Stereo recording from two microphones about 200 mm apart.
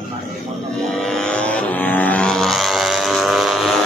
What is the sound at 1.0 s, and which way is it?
Vehicle, 5° left (ahead or behind).